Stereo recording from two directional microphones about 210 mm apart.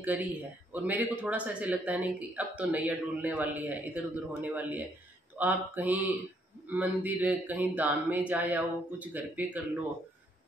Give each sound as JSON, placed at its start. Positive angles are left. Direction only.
{"t": 0.0, "sound": "a man's voice", "side_deg": -5}